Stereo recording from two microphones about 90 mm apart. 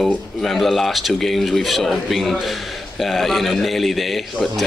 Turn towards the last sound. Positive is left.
turn(degrees=0)  # may be behind; listen again after turning